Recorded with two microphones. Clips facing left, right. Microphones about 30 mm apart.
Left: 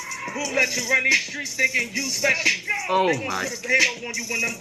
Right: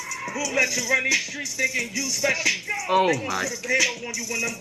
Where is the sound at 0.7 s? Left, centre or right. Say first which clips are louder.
Left 2 dB; centre.